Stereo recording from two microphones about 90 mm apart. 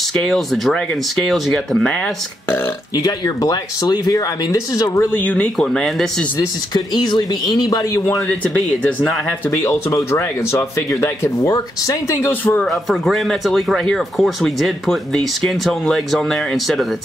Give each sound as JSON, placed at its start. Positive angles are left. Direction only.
{"t": 0.1, "sound": "speech", "side_deg": 5}
{"t": 3.0, "sound": "speech", "side_deg": 45}
{"t": 5.1, "sound": "speech", "side_deg": 20}
{"t": 5.7, "sound": "speech", "side_deg": 5}
{"t": 6.7, "sound": "speech", "side_deg": 55}
{"t": 8.5, "sound": "speech", "side_deg": 10}
{"t": 9.5, "sound": "speech", "side_deg": 30}
{"t": 12.2, "sound": "speech", "side_deg": 25}
{"t": 12.8, "sound": "speech", "side_deg": 0}